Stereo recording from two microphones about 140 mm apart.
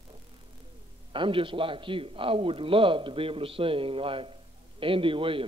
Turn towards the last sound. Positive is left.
turn(degrees=-40)  # may be behind; listen again after turning